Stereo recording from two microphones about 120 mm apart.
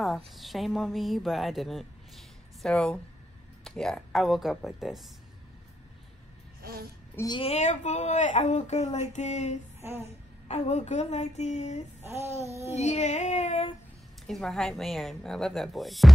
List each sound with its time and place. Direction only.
0.0 s a woman's voice: centre (ahead or behind)
7.4 s speech: 70° left (ahead or behind)
9.8 s a sound: 20° right (ahead or behind)
10.5 s speech: 65° left (ahead or behind)
12.0 s child singing: 25° right (ahead or behind)
12.7 s speech: 70° left (ahead or behind)
14.2 s a woman's voice: 5° left (ahead or behind)